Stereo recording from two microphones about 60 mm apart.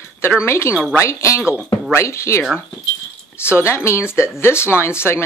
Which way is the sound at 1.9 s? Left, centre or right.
Left.